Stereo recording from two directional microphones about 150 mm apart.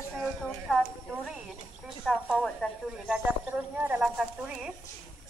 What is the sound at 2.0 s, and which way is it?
Speech, centre (ahead or behind).